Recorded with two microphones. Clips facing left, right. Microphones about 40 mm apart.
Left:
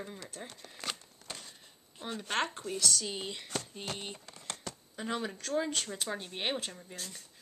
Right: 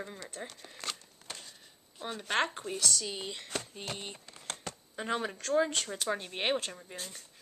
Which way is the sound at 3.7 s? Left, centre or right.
Centre.